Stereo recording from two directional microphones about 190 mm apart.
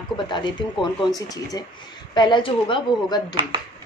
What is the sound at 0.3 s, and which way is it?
Speech, 25° left (ahead or behind).